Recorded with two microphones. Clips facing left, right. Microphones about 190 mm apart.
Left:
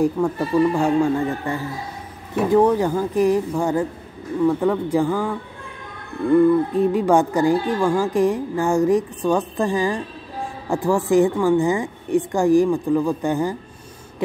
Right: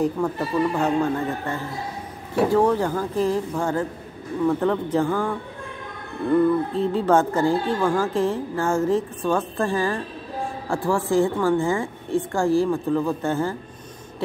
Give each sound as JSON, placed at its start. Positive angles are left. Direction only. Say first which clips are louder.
{"t": 0.0, "sound": "speech", "louder": "left 3 dB", "side_deg": 10}
{"t": 6.3, "sound": "speech", "louder": "left 4 dB", "side_deg": 15}